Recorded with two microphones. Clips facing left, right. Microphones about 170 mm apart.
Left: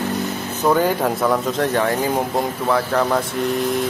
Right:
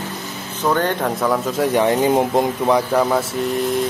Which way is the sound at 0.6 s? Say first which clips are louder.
Left 2 dB; 5° left (ahead or behind).